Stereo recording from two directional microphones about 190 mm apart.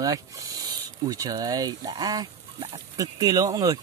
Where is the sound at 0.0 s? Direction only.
20° right (ahead or behind).